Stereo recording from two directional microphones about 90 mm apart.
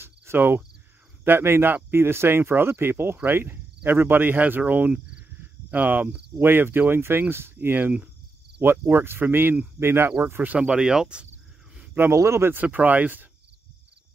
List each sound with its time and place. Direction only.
0.0 s cricket: 25° right (ahead or behind)
1.2 s speech: 25° right (ahead or behind); by 11.2 s 10° right (ahead or behind)
11.7 s a sound: 20° right (ahead or behind)
12.1 s speech: 30° right (ahead or behind)